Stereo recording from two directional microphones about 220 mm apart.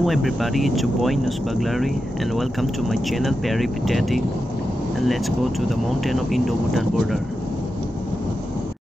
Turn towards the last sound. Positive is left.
turn(degrees=0)  # may be behind; listen again after turning